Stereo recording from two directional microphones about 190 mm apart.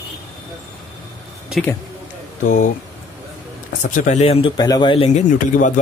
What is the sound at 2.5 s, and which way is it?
Speech, 40° left (ahead or behind).